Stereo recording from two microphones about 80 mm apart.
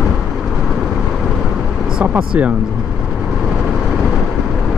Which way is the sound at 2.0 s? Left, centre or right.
Centre.